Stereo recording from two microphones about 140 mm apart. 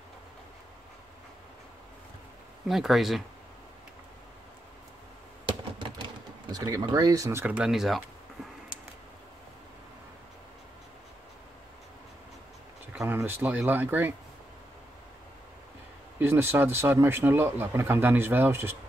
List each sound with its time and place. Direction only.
2.7 s speech: centre (ahead or behind)
6.5 s speech: 25° right (ahead or behind); by 8.0 s 5° right (ahead or behind)
13.0 s speech: 15° right (ahead or behind)
16.2 s speech: 15° right (ahead or behind)